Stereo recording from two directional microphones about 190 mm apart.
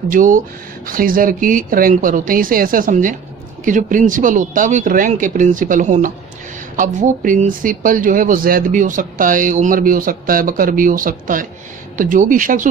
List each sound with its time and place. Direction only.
0.1 s speech: 45° right (ahead or behind)